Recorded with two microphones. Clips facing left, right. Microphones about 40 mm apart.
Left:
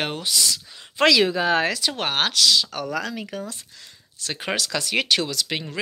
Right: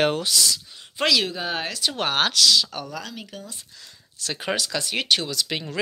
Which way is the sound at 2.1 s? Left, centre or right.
Left.